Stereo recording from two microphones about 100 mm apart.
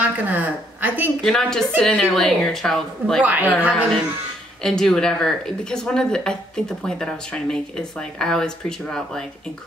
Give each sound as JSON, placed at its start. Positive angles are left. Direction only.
{"t": 0.0, "sound": "speech", "side_deg": -15}
{"t": 1.2, "sound": "a woman's voice", "side_deg": 5}
{"t": 3.2, "sound": "speech", "side_deg": -15}
{"t": 4.6, "sound": "speech", "side_deg": 5}